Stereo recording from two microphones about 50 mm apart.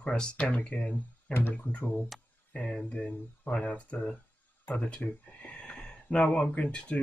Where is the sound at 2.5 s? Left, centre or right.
Centre.